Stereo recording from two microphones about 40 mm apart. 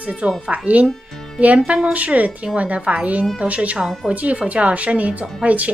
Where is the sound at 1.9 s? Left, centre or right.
Right.